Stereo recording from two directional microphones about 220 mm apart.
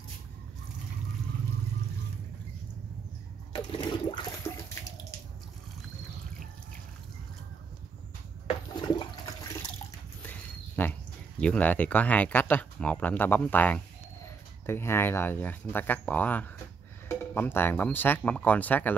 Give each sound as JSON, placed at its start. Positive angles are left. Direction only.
{"t": 3.7, "sound": "toilet flush", "side_deg": 20}
{"t": 8.5, "sound": "toilet flush", "side_deg": 20}
{"t": 10.2, "sound": "speech", "side_deg": 5}